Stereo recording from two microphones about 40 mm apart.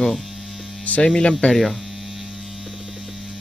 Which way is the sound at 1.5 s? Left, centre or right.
Centre.